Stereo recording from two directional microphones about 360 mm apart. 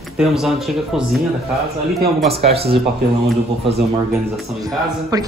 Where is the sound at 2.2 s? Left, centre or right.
Centre.